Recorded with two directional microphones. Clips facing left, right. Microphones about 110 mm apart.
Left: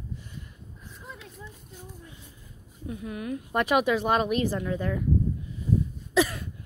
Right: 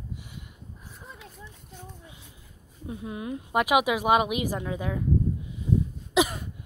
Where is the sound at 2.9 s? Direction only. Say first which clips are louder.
Left 1 dB; 25° right (ahead or behind).